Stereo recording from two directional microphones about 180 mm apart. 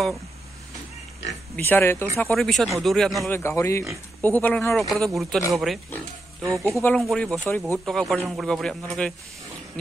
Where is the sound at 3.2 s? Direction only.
15° left (ahead or behind).